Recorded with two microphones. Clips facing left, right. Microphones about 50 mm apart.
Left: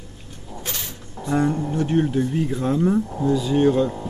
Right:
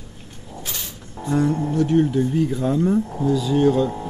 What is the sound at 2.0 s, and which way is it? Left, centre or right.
Speech, centre.